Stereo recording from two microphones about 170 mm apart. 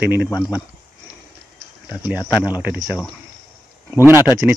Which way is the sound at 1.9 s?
10° right (ahead or behind).